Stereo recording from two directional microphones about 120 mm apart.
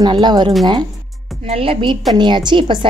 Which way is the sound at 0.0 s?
40° right (ahead or behind).